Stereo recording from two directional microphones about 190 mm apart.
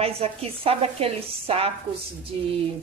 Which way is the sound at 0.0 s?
30° right (ahead or behind).